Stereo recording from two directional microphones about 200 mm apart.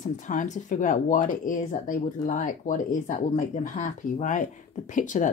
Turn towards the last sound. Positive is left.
turn(degrees=40)  # may be behind; listen again after turning